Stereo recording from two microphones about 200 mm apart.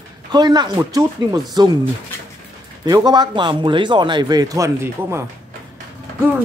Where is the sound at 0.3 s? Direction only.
20° right (ahead or behind).